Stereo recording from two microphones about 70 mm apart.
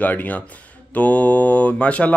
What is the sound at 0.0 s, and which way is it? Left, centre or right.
Speech, left.